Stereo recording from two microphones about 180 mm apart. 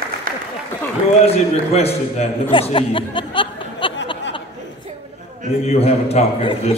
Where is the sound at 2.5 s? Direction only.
30° left (ahead or behind).